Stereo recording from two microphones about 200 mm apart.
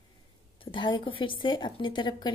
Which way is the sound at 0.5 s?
25° left (ahead or behind).